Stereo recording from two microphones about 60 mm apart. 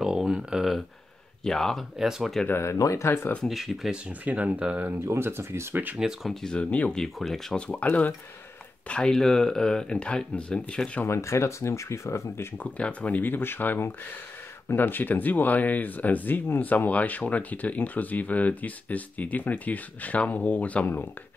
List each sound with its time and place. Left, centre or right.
0.0 s a sound: centre
1.4 s speech: centre
2.0 s speech: centre
3.0 s speech: left
3.4 s speech: centre
4.2 s speech: right
5.0 s speech: right
5.9 s speech: centre
6.4 s speech: centre
6.9 s speech: centre
7.5 s speech: centre
8.8 s speech: centre
11.1 s speech: left
12.5 s speech: left